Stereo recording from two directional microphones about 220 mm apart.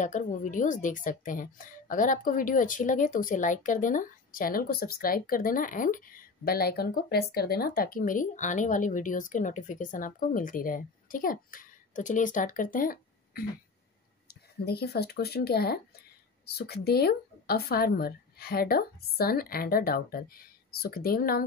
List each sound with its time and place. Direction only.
0.0 s a woman's voice: 35° left (ahead or behind)